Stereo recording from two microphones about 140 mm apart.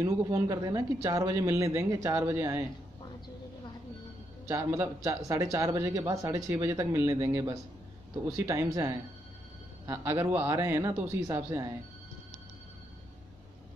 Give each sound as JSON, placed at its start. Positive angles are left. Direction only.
{"t": 0.0, "sound": "speech", "side_deg": -25}
{"t": 4.5, "sound": "speech", "side_deg": -20}